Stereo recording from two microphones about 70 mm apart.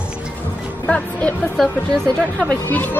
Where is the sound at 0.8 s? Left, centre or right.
Centre.